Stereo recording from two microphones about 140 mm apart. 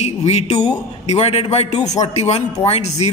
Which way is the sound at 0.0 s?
50° left (ahead or behind).